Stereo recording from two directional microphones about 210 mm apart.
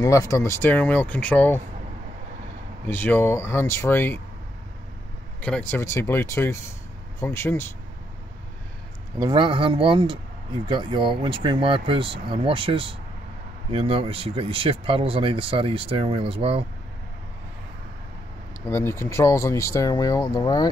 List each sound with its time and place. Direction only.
0.0 s speech: 15° left (ahead or behind)
2.9 s speech: 10° left (ahead or behind)
5.4 s speech: 5° left (ahead or behind)
9.2 s speech: 25° right (ahead or behind)
18.7 s speech: 10° left (ahead or behind)